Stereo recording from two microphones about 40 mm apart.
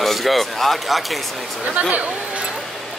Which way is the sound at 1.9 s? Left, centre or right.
Right.